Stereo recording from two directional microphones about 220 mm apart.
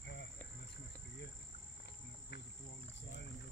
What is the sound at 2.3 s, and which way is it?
Cricket, 50° left (ahead or behind).